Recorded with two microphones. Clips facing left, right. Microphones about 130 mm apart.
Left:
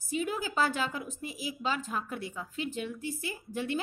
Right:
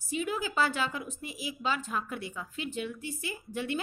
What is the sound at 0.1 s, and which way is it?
A woman's voice, 45° left (ahead or behind).